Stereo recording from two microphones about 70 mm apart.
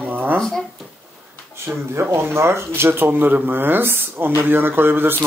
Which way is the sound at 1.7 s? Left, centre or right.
Centre.